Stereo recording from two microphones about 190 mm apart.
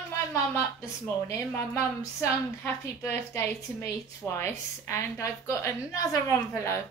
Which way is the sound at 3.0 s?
15° left (ahead or behind).